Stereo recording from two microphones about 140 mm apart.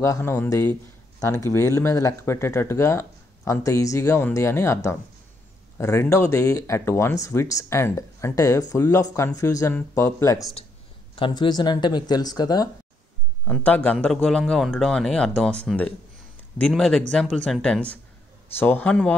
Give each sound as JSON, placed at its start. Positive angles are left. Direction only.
{"t": 0.0, "sound": "speech", "side_deg": 20}
{"t": 11.1, "sound": "speech", "side_deg": 35}
{"t": 13.5, "sound": "speech", "side_deg": 10}